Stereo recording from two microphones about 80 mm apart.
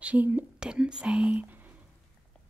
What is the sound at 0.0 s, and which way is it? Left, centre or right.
Speech, centre.